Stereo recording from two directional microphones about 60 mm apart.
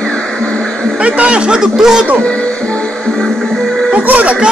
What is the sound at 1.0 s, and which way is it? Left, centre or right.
Speech, centre.